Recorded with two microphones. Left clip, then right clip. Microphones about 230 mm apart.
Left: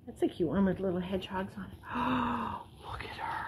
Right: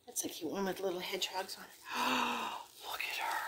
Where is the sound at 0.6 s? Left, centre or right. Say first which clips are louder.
Left 4 dB; right.